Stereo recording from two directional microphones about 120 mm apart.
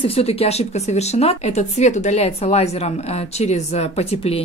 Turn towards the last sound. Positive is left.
turn(degrees=60)  # may be behind; listen again after turning